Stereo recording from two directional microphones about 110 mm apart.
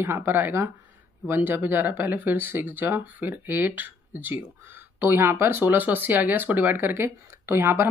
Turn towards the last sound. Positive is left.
turn(degrees=-20)  # may be behind; listen again after turning